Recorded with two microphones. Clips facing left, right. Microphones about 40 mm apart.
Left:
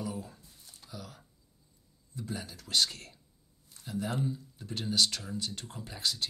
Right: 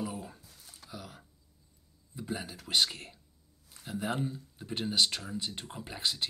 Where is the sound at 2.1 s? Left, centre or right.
Right.